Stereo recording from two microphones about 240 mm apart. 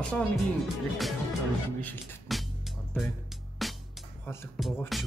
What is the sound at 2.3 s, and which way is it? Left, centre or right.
Music, centre.